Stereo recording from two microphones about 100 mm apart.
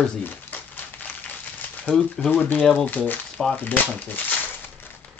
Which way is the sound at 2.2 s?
15° left (ahead or behind).